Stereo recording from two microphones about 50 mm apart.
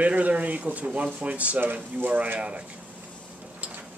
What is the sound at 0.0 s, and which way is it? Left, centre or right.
Speech, right.